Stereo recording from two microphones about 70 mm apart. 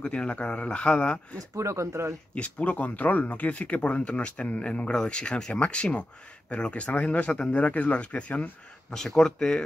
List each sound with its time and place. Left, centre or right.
0.0 s speech: centre
1.5 s speech: right
2.3 s speech: centre
8.9 s speech: centre